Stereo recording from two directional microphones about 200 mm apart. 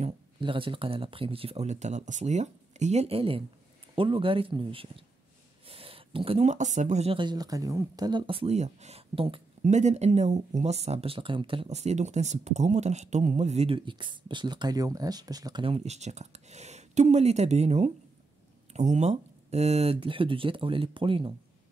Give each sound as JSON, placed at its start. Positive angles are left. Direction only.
{"t": 0.0, "sound": "speech", "side_deg": -25}